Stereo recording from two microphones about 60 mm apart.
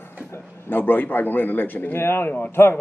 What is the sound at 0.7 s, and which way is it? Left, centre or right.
A man's voice, left.